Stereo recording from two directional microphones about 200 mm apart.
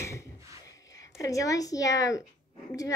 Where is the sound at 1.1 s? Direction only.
15° left (ahead or behind).